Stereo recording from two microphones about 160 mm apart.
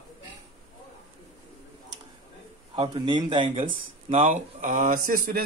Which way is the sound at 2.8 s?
30° right (ahead or behind).